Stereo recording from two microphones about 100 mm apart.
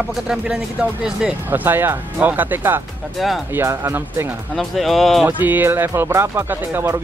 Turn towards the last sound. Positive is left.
turn(degrees=-20)  # may be behind; listen again after turning